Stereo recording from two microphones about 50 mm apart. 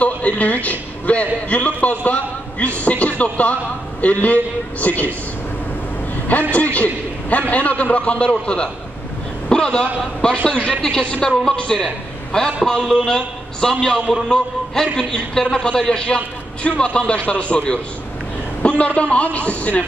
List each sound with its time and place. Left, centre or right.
0.0 s a man's voice: left
6.5 s a man's voice: left
9.5 s a man's voice: centre